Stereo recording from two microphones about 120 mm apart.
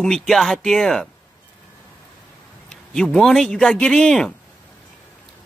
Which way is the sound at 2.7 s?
5° left (ahead or behind).